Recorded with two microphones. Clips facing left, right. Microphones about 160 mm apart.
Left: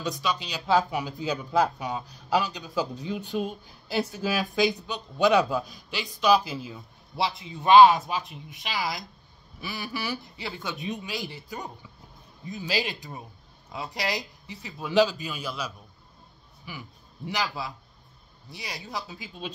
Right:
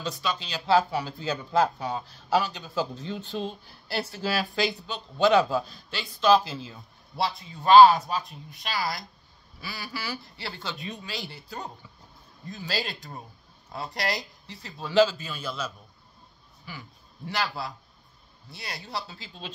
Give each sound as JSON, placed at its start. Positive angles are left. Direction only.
{"t": 0.0, "sound": "speech", "side_deg": 15}
{"t": 19.0, "sound": "speech", "side_deg": 15}